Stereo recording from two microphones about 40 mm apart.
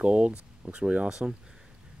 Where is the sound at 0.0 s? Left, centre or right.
Right.